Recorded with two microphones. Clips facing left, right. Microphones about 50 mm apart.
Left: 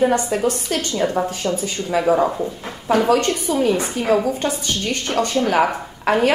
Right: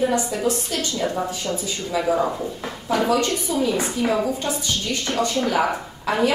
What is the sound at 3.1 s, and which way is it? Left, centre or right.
A woman's voice, left.